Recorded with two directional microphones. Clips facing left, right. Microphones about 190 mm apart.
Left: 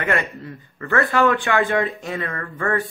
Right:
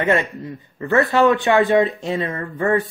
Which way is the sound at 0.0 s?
20° right (ahead or behind).